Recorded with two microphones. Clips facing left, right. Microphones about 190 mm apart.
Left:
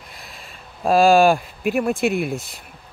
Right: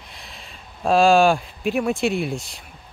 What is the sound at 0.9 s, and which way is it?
Speech, 5° left (ahead or behind).